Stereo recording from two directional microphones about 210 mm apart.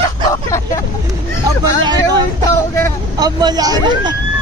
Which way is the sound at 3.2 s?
20° right (ahead or behind).